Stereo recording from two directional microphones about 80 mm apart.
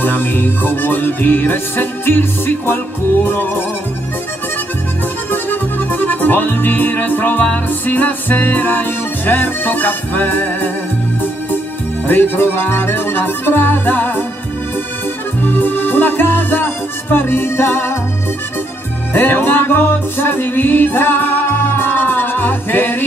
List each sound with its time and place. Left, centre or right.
0.0 s music: left
5.3 s music: left
12.1 s music: left
15.4 s music: left
19.1 s music: left